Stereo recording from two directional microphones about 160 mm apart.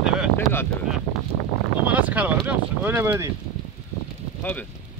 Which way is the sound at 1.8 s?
10° right (ahead or behind).